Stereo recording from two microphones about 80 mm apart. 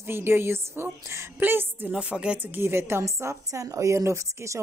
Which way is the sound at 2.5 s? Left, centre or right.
Right.